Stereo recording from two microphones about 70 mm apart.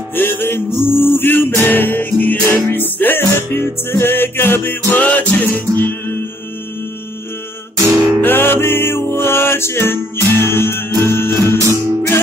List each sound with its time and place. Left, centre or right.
0.1 s music: left
7.8 s music: right
8.2 s music: left
11.5 s music: right